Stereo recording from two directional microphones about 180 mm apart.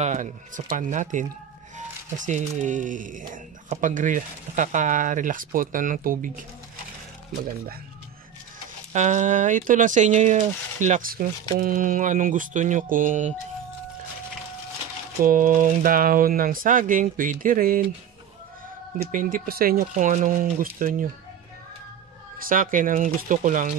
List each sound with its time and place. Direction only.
0.0 s speech: 45° right (ahead or behind)
8.9 s speech: 40° right (ahead or behind)
15.2 s speech: 50° right (ahead or behind)
18.9 s speech: 50° right (ahead or behind)
22.4 s speech: 50° right (ahead or behind)